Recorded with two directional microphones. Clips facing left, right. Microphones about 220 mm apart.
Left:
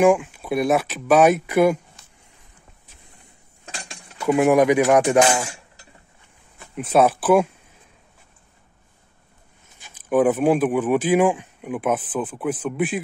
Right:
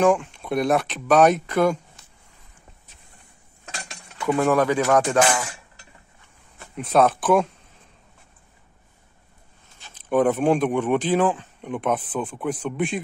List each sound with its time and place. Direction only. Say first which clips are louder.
0.0 s speech: left 3 dB; 10° left (ahead or behind)
3.6 s cutlery: left 1 dB; 15° left (ahead or behind)
6.6 s speech: left 1 dB; 5° left (ahead or behind)
9.8 s speech: left 2 dB; 10° left (ahead or behind)